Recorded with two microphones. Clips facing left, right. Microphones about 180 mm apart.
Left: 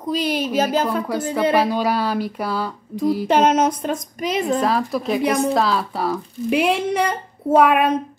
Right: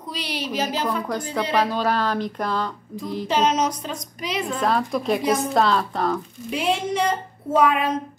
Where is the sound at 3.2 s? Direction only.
55° left (ahead or behind).